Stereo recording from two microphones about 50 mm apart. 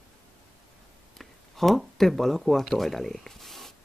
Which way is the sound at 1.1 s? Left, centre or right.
Centre.